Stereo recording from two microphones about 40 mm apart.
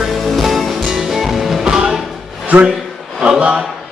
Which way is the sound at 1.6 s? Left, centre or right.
Centre.